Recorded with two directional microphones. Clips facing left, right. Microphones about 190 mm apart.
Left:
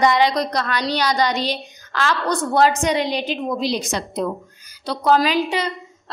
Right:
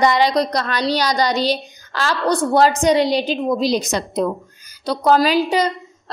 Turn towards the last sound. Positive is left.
turn(degrees=-40)  # may be behind; listen again after turning